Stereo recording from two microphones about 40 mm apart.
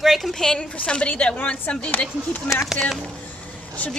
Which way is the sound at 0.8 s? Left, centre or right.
Left.